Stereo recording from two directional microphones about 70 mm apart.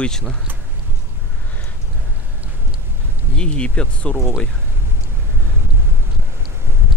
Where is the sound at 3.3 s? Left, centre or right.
Centre.